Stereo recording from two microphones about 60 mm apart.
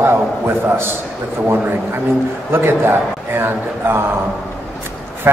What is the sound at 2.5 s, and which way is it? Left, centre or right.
A man's voice, right.